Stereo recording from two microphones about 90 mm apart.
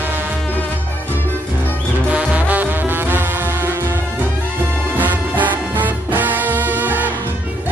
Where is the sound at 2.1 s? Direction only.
15° right (ahead or behind).